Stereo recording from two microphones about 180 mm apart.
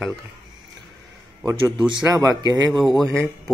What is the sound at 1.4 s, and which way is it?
A man's voice, 20° right (ahead or behind).